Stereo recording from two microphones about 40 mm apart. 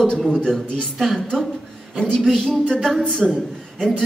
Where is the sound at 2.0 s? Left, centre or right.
Centre.